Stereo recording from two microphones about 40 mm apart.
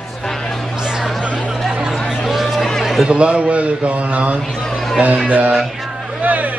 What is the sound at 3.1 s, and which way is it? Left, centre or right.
A man's voice, right.